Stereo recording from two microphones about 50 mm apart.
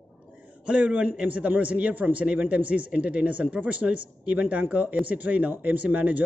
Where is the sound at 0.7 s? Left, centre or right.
Right.